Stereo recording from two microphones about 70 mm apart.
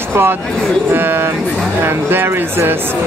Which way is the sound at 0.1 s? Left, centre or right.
Right.